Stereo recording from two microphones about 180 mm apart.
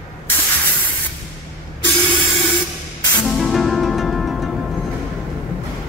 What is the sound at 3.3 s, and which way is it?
Music, centre (ahead or behind).